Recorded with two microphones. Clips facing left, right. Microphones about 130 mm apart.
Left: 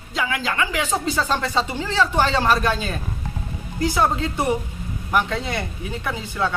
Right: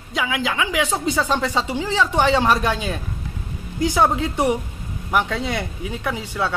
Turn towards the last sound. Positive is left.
turn(degrees=-10)  # may be behind; listen again after turning